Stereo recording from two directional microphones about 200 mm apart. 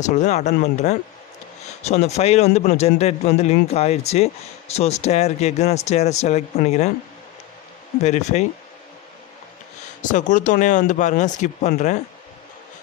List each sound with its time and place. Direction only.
0.0 s a man's voice: 35° left (ahead or behind)
1.8 s a man's voice: 35° left (ahead or behind)
8.0 s a man's voice: 35° left (ahead or behind)
10.0 s a man's voice: 40° left (ahead or behind)